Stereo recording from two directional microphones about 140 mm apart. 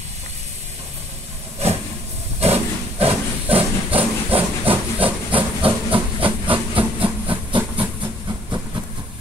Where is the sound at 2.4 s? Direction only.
45° right (ahead or behind).